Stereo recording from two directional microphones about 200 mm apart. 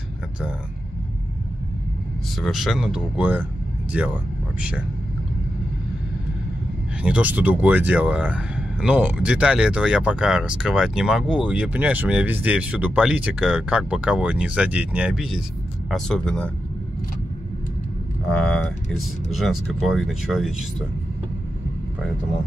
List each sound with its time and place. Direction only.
2.3 s speech: centre (ahead or behind)
7.0 s speech: 5° right (ahead or behind)
18.3 s speech: 5° left (ahead or behind)